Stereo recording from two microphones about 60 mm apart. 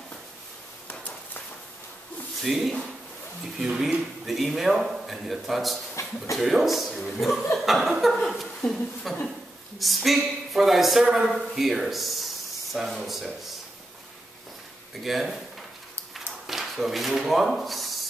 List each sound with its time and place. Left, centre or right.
0.8 s a sound: left
2.4 s speech: centre
6.0 s a sound: left
6.3 s speech: centre
15.0 s speech: centre
16.4 s speech: centre